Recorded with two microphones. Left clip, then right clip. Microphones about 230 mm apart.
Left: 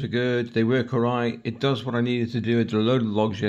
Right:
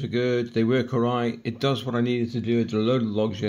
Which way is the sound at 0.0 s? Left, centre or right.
Centre.